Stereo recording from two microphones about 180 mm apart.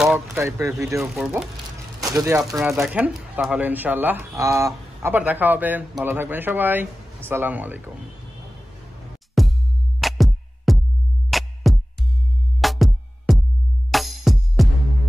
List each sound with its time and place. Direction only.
0.0 s speech: 5° right (ahead or behind)
1.1 s speech: 5° right (ahead or behind)
2.0 s speech: 20° right (ahead or behind)
2.6 s speech: 5° right (ahead or behind)
9.4 s music: centre (ahead or behind)